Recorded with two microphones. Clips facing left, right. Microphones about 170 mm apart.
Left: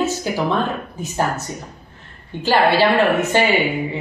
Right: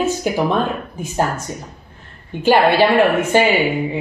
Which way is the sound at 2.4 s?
15° right (ahead or behind).